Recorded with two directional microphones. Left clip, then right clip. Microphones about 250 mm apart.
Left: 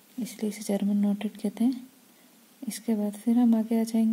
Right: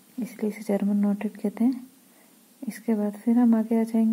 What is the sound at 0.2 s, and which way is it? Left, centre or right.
Speech, left.